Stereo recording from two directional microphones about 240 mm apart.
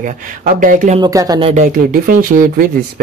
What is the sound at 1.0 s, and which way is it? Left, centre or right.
Speech, centre.